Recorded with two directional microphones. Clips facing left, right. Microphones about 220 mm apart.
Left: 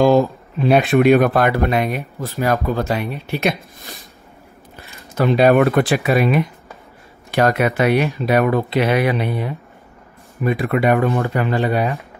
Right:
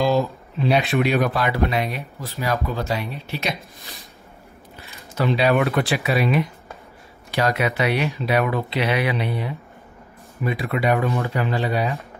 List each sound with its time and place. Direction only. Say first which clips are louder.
0.0 s speech: left 6 dB; 50° left (ahead or behind)
5.1 s speech: left 6 dB; 50° left (ahead or behind)